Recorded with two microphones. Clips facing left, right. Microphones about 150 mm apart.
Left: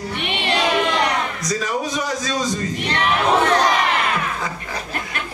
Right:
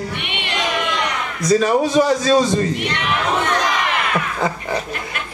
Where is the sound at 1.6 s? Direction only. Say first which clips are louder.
Right 8 dB; 30° right (ahead or behind).